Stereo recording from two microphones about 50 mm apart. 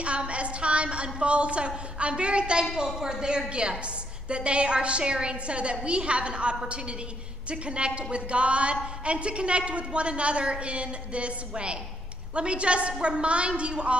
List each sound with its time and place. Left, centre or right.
0.0 s a woman's voice: right
2.6 s a man's voice: centre